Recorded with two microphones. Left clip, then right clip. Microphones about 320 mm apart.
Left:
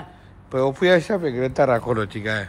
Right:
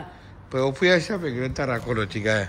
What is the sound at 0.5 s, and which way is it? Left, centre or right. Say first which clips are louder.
Speech: left 3 dB; centre.